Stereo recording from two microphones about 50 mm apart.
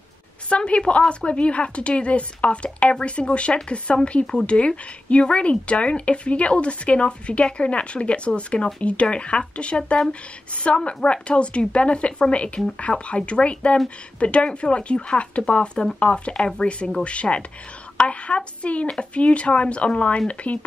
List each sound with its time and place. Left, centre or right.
0.5 s a woman's voice: left